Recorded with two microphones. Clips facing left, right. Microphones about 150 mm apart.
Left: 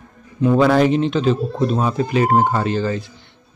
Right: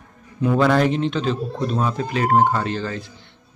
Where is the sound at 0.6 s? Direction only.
5° left (ahead or behind).